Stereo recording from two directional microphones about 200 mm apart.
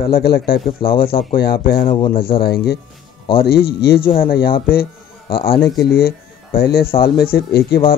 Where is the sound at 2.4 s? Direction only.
50° left (ahead or behind).